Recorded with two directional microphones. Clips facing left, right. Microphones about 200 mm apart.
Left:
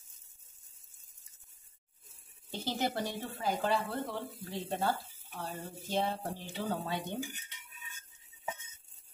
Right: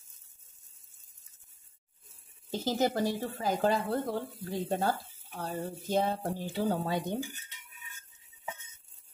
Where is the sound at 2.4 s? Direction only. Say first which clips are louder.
Right 6 dB; 40° right (ahead or behind).